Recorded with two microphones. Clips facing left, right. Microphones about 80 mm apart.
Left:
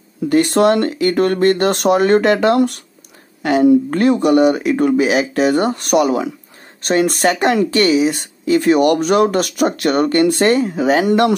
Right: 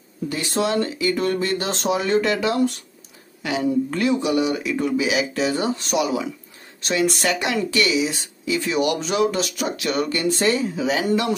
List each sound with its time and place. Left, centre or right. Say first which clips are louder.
0.3 s speech: left 10 dB; left